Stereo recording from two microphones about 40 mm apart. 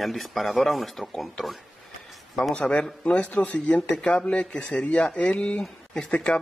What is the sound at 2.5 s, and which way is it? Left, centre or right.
Speech, left.